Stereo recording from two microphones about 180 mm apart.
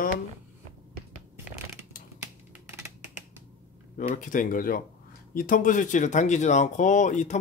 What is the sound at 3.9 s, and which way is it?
Speech, 45° left (ahead or behind).